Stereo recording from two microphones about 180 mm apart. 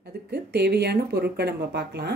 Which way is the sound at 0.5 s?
65° right (ahead or behind).